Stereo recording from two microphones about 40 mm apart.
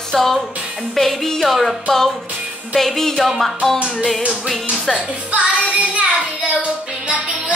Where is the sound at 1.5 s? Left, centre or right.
Centre.